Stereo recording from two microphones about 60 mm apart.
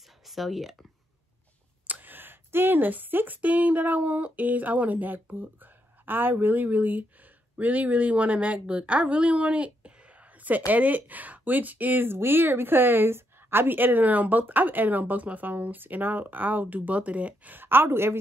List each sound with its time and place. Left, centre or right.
0.3 s speech: centre
1.9 s a woman's voice: right
17.6 s speech: right